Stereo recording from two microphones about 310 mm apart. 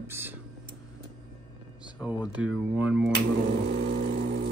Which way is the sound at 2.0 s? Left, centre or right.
Centre.